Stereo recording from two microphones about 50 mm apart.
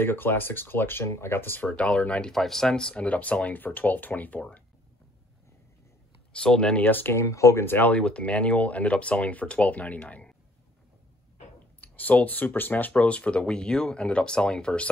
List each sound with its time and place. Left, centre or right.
0.0 s speech: left
1.0 s speech: left
1.7 s speech: left
2.3 s speech: centre
3.0 s speech: left
6.3 s speech: centre
6.8 s speech: left
7.2 s speech: left
7.8 s speech: left
11.8 s speech: left
12.9 s speech: left